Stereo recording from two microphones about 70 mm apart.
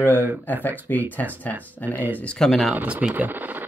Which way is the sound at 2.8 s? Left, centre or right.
Right.